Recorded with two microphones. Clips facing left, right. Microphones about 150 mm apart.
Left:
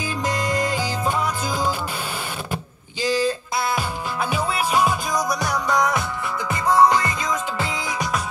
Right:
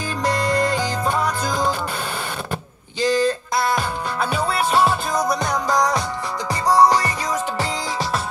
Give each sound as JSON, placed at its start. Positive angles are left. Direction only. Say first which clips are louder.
{"t": 3.0, "sound": "a sound", "louder": "right 3 dB", "side_deg": -50}
{"t": 3.7, "sound": "music", "louder": "right 2 dB", "side_deg": 5}
{"t": 6.8, "sound": "music", "louder": "right 1 dB", "side_deg": -35}